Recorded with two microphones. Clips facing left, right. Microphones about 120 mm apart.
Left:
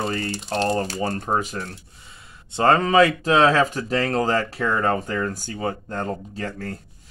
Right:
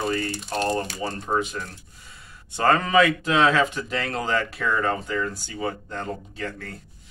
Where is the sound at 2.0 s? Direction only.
25° left (ahead or behind).